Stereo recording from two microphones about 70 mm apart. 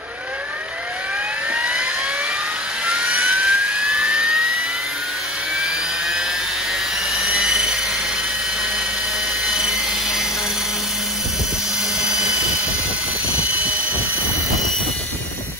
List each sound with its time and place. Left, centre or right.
1.5 s vehicle: centre
2.9 s jet engine: centre